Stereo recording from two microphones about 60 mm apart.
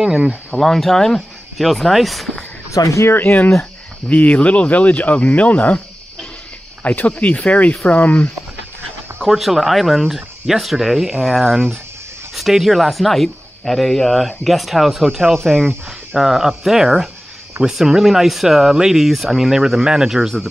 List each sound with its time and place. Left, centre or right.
0.0 s speech: centre
0.6 s speech: centre
2.7 s speech: left
3.1 s speech: left
4.1 s speech: left
6.8 s speech: left
9.2 s speech: centre
12.4 s speech: centre
16.2 s speech: centre